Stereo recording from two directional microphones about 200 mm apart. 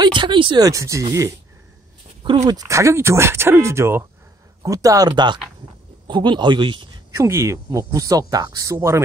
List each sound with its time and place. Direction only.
0.0 s speech: 25° right (ahead or behind)
2.2 s speech: 20° right (ahead or behind)
7.2 s speech: 15° right (ahead or behind)